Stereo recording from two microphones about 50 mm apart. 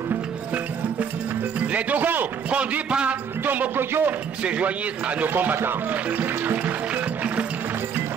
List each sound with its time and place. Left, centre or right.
1.7 s speech: right
2.5 s a man's voice: right
3.7 s speech: right
4.4 s a man's voice: right
5.3 s speech: right
6.0 s music: right